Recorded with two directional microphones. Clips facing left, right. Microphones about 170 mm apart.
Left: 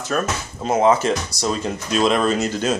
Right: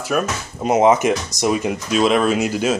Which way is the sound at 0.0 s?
10° right (ahead or behind).